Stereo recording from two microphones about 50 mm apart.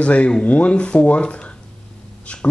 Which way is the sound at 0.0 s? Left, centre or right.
Left.